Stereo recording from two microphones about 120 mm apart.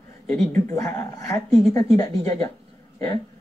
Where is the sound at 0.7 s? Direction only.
30° left (ahead or behind).